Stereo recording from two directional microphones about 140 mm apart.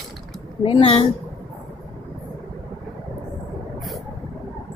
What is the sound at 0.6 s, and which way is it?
Speech, 45° left (ahead or behind).